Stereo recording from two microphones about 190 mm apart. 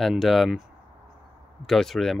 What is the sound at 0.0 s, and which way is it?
Speech, centre (ahead or behind).